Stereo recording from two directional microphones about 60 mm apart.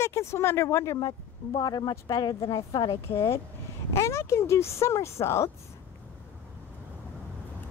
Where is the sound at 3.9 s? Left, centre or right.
Left.